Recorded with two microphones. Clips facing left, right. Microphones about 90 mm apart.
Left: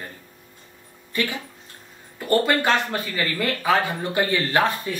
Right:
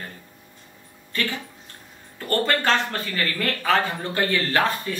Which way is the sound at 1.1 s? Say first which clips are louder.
Left 2 dB; 15° left (ahead or behind).